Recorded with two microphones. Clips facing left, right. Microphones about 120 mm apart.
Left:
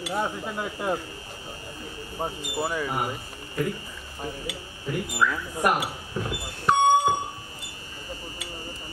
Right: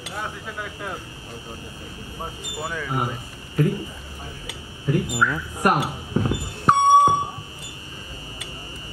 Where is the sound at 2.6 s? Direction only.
5° left (ahead or behind).